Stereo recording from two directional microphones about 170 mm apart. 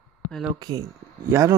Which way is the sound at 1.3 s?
15° right (ahead or behind).